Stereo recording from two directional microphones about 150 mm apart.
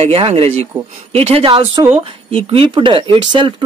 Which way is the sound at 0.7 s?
15° right (ahead or behind).